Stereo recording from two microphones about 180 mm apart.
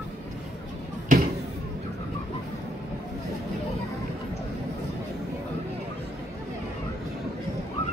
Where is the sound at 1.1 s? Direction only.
45° right (ahead or behind).